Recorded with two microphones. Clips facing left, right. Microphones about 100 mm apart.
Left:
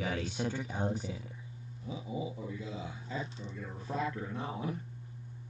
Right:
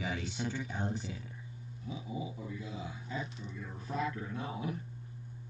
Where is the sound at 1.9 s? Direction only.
25° left (ahead or behind).